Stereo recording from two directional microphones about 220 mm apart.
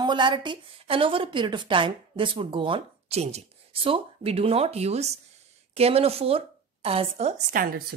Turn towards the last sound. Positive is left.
turn(degrees=-35)  # may be behind; listen again after turning